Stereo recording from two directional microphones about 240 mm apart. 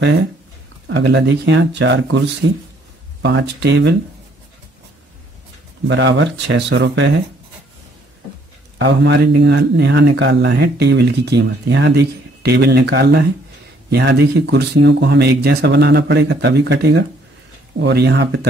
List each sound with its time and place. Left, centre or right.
0.8 s speech: right
5.9 s speech: right
8.7 s speech: right